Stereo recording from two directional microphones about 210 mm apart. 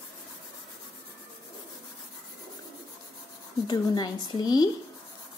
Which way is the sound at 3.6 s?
20° left (ahead or behind).